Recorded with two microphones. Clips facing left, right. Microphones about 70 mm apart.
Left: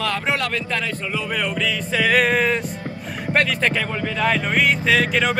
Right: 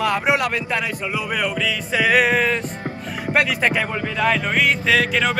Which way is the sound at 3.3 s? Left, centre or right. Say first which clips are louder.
Right 1 dB; centre.